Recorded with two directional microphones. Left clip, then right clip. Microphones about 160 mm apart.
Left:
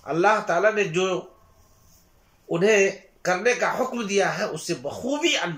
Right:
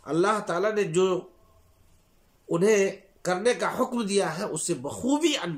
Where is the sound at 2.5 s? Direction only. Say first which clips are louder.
Left 3 dB; 25° right (ahead or behind).